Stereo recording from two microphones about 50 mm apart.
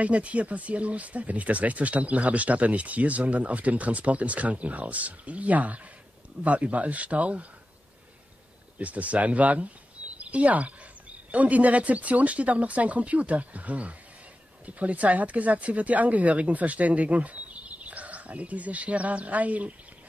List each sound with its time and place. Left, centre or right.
0.0 s speech: right
8.7 s a woman's voice: right